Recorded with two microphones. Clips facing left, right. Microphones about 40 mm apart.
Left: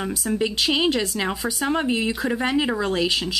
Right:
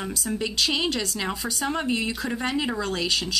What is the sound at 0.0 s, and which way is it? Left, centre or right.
Speech, centre.